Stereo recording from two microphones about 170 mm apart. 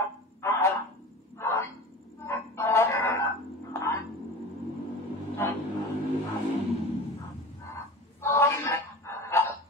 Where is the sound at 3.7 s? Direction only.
15° left (ahead or behind).